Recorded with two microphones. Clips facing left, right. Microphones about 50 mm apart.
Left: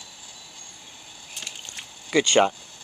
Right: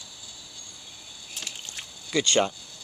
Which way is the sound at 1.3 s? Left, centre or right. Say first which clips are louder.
Even; centre.